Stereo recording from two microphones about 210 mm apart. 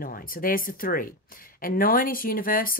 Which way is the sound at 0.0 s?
45° left (ahead or behind).